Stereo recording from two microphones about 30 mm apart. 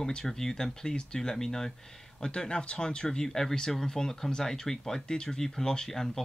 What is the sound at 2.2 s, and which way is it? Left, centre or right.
Speech, left.